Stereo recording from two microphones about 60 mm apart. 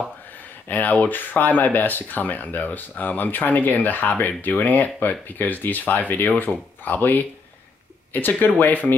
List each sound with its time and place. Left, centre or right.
0.7 s speech: left